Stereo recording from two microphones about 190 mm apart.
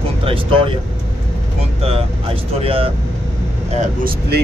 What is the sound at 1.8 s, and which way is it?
Speech, 30° right (ahead or behind).